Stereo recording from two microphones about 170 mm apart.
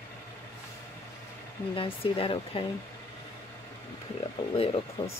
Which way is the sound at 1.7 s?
35° left (ahead or behind).